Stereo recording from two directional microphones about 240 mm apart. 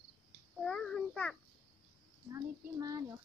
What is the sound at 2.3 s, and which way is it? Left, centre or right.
Child singing, centre.